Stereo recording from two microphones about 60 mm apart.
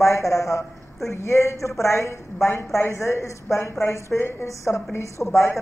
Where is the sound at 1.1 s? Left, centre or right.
Left.